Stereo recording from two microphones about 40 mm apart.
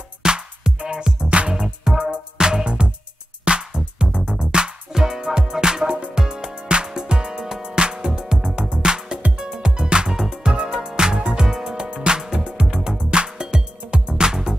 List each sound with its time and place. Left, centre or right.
0.2 s music: centre
2.3 s music: centre